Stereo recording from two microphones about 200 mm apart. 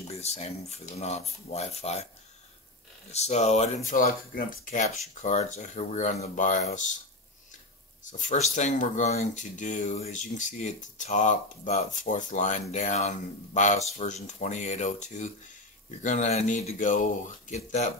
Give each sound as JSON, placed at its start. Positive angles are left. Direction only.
{"t": 0.1, "sound": "speech", "side_deg": 30}
{"t": 3.1, "sound": "speech", "side_deg": 35}
{"t": 8.0, "sound": "speech", "side_deg": 40}